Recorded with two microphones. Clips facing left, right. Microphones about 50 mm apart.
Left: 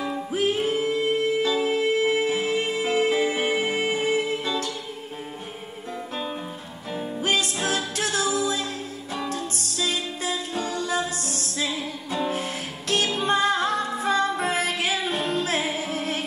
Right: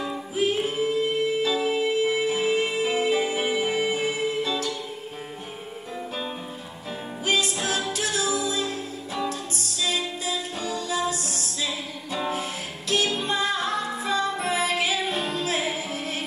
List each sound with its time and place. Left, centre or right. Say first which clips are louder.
0.4 s music: even; left
7.2 s music: even; left